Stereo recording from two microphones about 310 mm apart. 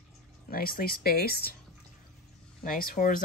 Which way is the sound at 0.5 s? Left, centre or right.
Left.